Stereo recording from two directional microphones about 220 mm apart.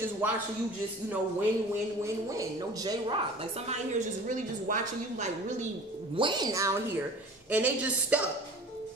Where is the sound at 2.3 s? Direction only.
15° right (ahead or behind); by 5.7 s 35° right (ahead or behind).